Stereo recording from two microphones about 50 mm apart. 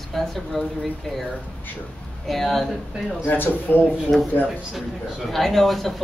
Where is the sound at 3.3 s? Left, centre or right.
Left.